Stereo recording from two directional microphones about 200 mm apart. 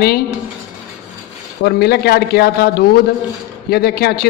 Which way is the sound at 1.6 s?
55° left (ahead or behind).